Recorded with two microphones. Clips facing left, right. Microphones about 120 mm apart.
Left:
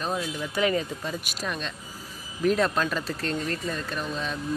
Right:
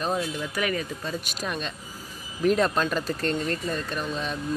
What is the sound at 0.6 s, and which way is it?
Speech, 25° left (ahead or behind).